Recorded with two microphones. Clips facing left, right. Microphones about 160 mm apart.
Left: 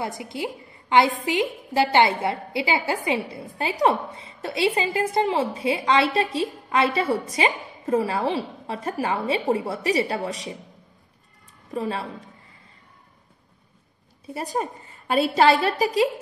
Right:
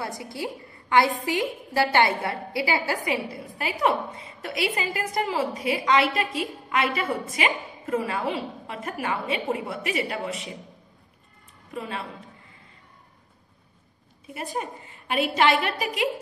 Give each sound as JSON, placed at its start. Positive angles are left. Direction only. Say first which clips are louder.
{"t": 0.2, "sound": "a woman's voice", "louder": "left 2 dB", "side_deg": 20}
{"t": 11.7, "sound": "a woman's voice", "louder": "left 6 dB", "side_deg": 35}
{"t": 14.2, "sound": "a woman's voice", "louder": "left 4 dB", "side_deg": 35}